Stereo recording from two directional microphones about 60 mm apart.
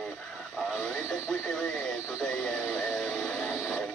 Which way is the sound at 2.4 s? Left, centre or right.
Centre.